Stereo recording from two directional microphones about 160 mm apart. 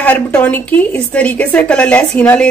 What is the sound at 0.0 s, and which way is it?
A woman's voice, 10° left (ahead or behind).